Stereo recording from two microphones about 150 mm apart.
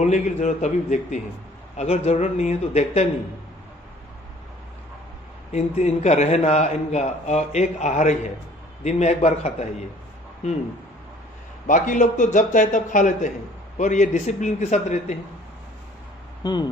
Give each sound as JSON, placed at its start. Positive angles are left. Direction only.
{"t": 0.0, "sound": "a man's voice", "side_deg": 50}
{"t": 5.5, "sound": "a man's voice", "side_deg": 50}
{"t": 11.6, "sound": "a man's voice", "side_deg": 55}
{"t": 16.4, "sound": "speech", "side_deg": 25}